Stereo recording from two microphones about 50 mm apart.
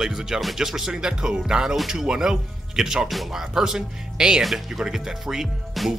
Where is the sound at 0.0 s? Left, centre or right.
Centre.